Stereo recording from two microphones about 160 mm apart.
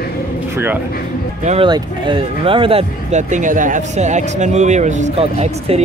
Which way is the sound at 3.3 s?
55° right (ahead or behind).